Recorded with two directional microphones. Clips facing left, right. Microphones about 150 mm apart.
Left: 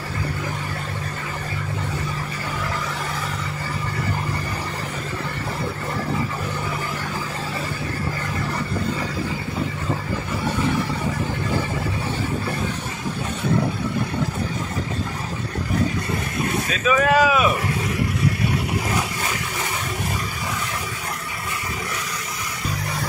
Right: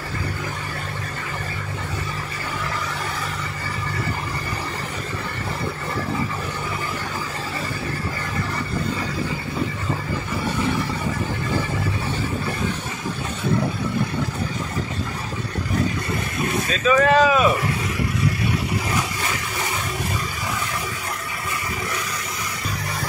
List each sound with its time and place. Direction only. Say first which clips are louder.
16.7 s speech: right 2 dB; 5° left (ahead or behind)